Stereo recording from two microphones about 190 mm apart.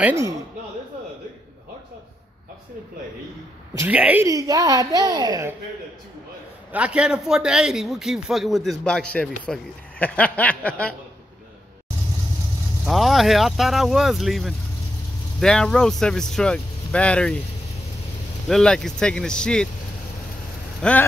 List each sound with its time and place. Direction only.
0.0 s speech: 15° right (ahead or behind)
3.8 s speech: 10° right (ahead or behind)
6.7 s a man's voice: 5° right (ahead or behind)
12.8 s a man's voice: centre (ahead or behind)
18.5 s a man's voice: 5° left (ahead or behind)
20.8 s a man's voice: 5° left (ahead or behind)